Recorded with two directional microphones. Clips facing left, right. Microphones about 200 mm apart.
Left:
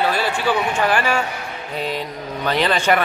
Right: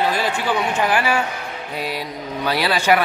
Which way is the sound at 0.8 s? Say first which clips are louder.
Even; 10° right (ahead or behind).